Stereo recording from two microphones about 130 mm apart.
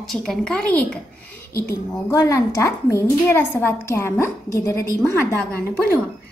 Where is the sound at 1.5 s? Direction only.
25° left (ahead or behind).